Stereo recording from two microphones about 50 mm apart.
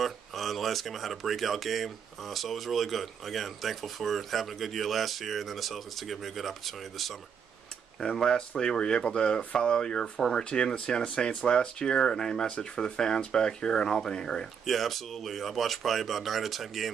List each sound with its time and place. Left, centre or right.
0.0 s speech: centre
8.0 s speech: centre
14.7 s speech: centre